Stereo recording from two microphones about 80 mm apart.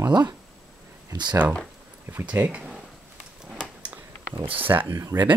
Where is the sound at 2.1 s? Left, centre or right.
Right.